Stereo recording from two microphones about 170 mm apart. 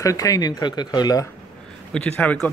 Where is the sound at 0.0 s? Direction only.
20° left (ahead or behind).